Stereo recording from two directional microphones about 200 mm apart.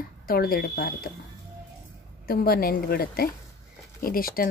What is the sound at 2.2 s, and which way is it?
Speech, 50° left (ahead or behind).